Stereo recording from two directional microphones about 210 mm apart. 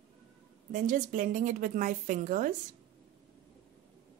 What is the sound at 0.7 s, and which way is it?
A woman's voice, 35° right (ahead or behind).